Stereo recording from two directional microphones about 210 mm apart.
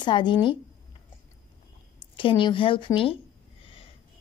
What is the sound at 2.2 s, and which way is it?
Speech, 25° left (ahead or behind).